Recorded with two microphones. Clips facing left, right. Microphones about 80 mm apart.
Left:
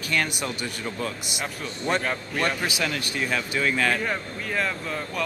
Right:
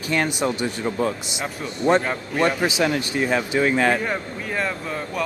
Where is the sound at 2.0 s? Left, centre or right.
Centre.